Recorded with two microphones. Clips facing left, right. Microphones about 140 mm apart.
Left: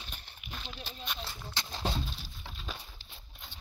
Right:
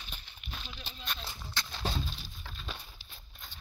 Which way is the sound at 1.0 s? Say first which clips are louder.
Left 1 dB; 10° left (ahead or behind).